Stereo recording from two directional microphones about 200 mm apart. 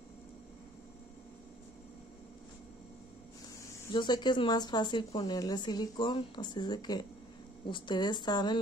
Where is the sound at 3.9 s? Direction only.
20° left (ahead or behind).